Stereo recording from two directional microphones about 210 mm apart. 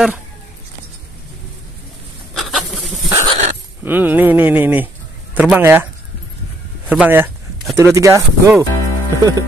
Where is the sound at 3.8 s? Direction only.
10° right (ahead or behind).